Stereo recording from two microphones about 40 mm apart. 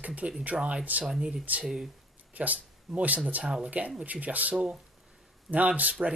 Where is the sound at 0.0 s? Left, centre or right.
Right.